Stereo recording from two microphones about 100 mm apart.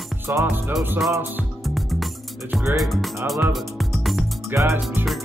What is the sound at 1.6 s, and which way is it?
Music, centre (ahead or behind).